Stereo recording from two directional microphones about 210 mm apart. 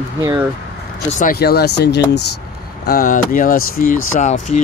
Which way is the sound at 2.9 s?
45° left (ahead or behind).